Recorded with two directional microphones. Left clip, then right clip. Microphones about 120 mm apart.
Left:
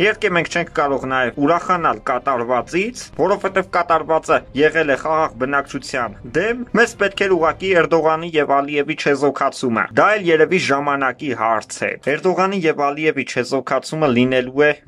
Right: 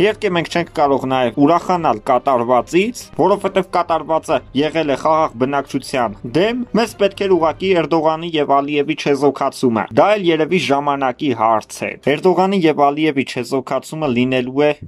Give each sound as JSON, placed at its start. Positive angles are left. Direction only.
{"t": 0.0, "sound": "speech", "side_deg": -40}